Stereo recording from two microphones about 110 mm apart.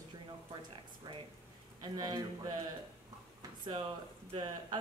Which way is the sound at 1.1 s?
35° right (ahead or behind).